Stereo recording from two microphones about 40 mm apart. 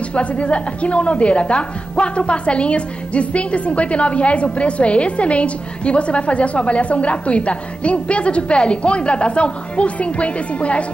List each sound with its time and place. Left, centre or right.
0.1 s a woman's voice: left